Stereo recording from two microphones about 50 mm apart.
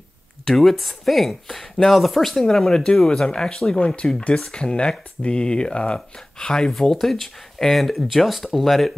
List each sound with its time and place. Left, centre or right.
0.5 s speech: centre